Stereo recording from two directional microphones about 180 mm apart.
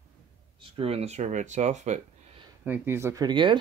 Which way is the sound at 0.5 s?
30° right (ahead or behind).